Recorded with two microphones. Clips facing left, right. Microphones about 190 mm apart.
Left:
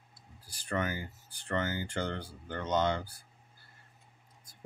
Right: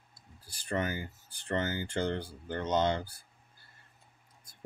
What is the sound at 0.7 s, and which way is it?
Speech, 25° right (ahead or behind).